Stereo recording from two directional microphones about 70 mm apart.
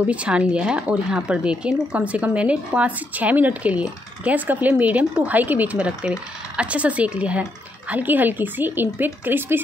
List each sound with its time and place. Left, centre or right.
0.0 s speech: centre